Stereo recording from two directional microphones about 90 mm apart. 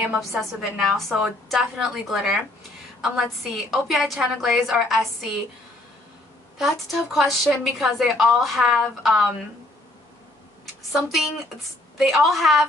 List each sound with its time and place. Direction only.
0.4 s a woman's voice: centre (ahead or behind)
6.6 s a woman's voice: centre (ahead or behind)
10.6 s a sound: centre (ahead or behind)
12.0 s a woman's voice: centre (ahead or behind)